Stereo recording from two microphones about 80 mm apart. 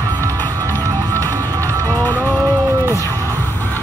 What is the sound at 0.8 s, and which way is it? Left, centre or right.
Music, right.